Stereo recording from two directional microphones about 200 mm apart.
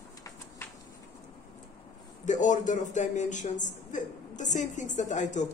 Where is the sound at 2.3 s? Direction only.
40° left (ahead or behind).